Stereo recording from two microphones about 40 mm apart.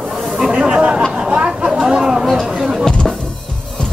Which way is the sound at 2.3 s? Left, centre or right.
Centre.